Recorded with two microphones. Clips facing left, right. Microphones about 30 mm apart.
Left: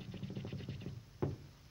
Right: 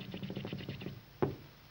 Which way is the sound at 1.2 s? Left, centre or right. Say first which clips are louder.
Right 6 dB; right.